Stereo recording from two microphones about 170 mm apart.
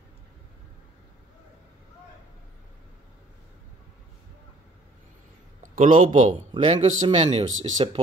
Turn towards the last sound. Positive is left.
turn(degrees=-35)  # may be behind; listen again after turning